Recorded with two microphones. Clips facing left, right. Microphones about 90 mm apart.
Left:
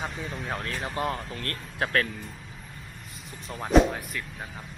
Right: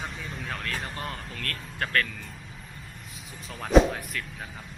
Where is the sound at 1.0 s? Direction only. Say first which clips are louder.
Left 5 dB; 25° left (ahead or behind).